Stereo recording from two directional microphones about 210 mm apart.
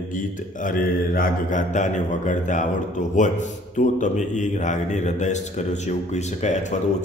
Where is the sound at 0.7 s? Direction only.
40° left (ahead or behind).